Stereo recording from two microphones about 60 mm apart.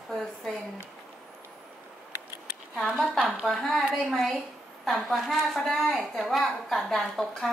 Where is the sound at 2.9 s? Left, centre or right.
Right.